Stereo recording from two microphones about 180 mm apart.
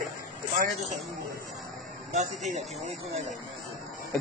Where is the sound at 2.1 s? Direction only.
40° right (ahead or behind).